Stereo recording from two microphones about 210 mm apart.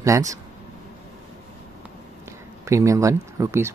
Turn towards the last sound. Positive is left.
turn(degrees=-15)  # may be behind; listen again after turning